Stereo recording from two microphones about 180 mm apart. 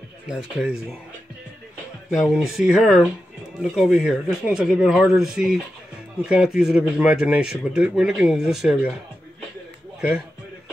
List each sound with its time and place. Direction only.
0.3 s speech: 5° right (ahead or behind)
2.0 s speech: centre (ahead or behind)
9.9 s a man's voice: 5° right (ahead or behind)